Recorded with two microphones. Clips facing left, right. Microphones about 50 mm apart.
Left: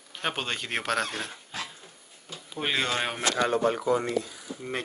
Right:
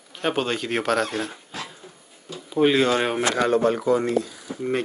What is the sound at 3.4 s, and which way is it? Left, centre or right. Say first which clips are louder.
Speech: right 4 dB; right.